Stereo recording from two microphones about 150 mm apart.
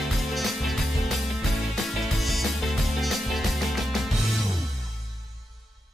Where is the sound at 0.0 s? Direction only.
Centre (ahead or behind).